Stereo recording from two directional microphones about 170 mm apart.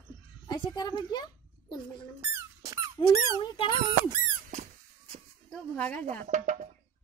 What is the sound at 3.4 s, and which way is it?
Speech, 30° left (ahead or behind).